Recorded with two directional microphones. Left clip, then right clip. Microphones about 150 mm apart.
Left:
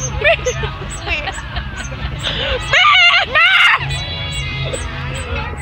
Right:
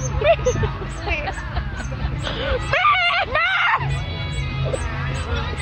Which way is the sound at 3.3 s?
20° right (ahead or behind).